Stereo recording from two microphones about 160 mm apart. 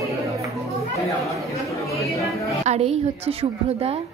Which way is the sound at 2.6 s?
40° right (ahead or behind).